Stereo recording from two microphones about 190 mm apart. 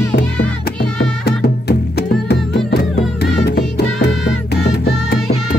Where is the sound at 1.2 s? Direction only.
55° left (ahead or behind).